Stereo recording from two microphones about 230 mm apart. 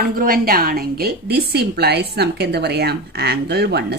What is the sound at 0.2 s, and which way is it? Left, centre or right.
Speech, right.